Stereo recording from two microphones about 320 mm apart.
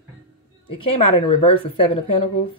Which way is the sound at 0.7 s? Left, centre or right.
Centre.